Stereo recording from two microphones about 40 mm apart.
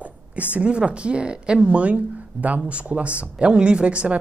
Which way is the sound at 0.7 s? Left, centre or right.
Right.